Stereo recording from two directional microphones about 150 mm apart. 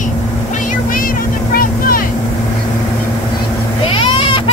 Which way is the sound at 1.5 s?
75° left (ahead or behind).